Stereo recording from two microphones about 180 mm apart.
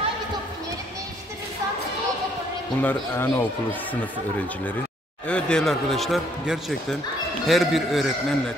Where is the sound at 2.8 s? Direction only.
10° left (ahead or behind).